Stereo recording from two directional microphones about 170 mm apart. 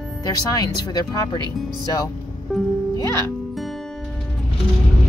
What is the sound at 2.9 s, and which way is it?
Music, 20° left (ahead or behind).